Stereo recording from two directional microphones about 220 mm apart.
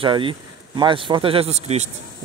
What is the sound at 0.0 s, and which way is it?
Speech, 25° right (ahead or behind).